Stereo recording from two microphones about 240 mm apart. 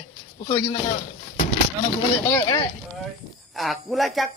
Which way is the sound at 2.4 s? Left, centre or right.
Centre.